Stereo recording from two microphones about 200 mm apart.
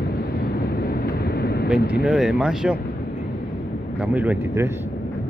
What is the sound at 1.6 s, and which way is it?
Speech, 5° right (ahead or behind).